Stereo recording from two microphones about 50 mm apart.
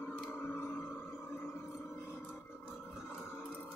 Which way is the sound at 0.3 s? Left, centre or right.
Left.